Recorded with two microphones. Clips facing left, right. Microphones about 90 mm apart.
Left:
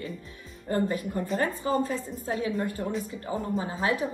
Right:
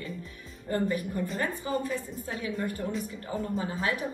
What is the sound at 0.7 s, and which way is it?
A woman's voice, 30° left (ahead or behind).